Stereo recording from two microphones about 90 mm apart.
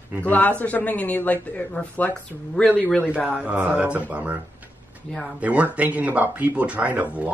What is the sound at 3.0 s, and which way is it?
Speech, 10° right (ahead or behind).